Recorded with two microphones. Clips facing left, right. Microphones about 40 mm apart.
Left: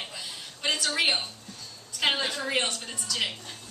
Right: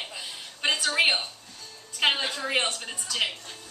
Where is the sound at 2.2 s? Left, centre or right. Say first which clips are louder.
Even; right.